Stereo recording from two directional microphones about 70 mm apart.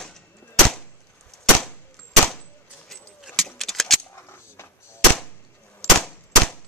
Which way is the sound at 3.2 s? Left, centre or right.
Centre.